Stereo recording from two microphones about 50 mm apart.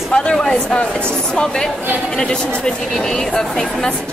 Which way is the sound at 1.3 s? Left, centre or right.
Centre.